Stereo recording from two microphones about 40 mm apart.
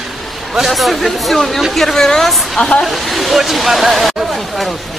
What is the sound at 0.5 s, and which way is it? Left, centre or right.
Speech, centre.